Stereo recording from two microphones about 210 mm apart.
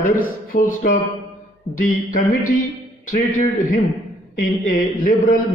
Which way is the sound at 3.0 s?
40° left (ahead or behind).